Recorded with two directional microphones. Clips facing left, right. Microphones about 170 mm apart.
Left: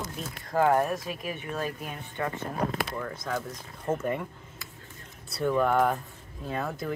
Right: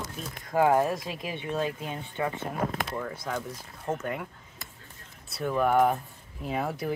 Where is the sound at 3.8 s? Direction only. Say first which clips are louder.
Left 3 dB; centre (ahead or behind).